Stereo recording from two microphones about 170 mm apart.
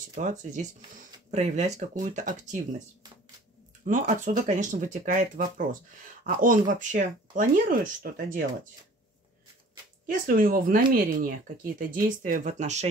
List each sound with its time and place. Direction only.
0.1 s speech: 45° right (ahead or behind)
3.8 s speech: 50° right (ahead or behind)
10.0 s speech: 55° right (ahead or behind)